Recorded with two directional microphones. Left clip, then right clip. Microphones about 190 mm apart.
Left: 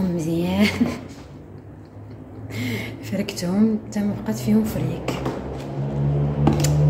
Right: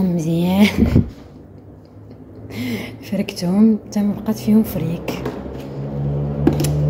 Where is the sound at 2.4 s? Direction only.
15° right (ahead or behind).